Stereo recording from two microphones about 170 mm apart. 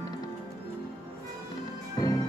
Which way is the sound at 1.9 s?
20° left (ahead or behind).